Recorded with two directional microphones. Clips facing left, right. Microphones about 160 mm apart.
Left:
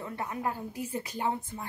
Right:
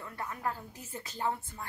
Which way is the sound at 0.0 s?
20° left (ahead or behind).